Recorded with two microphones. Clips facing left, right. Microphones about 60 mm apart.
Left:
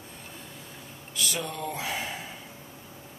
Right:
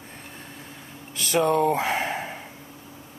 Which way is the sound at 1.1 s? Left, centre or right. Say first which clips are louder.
Right 11 dB; right.